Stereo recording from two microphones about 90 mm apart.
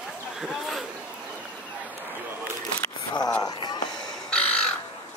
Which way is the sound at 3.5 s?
50° left (ahead or behind).